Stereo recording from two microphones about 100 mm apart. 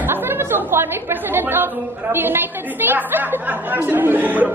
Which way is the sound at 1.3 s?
20° right (ahead or behind).